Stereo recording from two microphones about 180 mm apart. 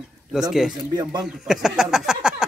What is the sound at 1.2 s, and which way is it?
Speech, centre (ahead or behind).